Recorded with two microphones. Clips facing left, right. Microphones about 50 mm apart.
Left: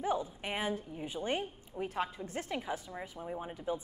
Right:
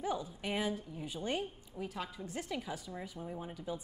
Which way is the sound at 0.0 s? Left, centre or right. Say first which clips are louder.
Left 3 dB; left.